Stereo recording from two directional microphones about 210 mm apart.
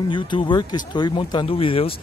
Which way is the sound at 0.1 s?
25° left (ahead or behind).